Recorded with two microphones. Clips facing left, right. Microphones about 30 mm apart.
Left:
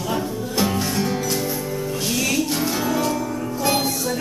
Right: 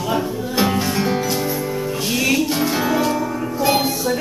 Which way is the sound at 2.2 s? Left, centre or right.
Centre.